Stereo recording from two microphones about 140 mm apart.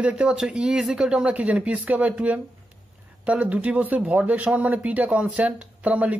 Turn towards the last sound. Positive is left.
turn(degrees=-10)  # may be behind; listen again after turning